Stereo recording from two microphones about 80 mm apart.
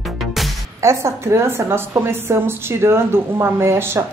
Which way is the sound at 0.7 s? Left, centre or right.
Right.